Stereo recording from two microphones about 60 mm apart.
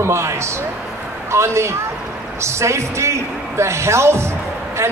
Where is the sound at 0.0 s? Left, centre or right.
Right.